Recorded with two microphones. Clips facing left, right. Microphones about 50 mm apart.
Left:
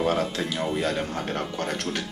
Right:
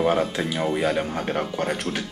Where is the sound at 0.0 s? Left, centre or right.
Centre.